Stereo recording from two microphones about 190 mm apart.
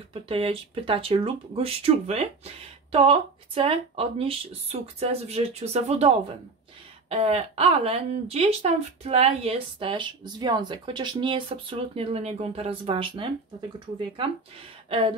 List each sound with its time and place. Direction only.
0.1 s speech: 30° right (ahead or behind)